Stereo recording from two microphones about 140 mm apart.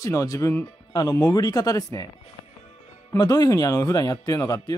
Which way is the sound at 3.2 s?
30° left (ahead or behind).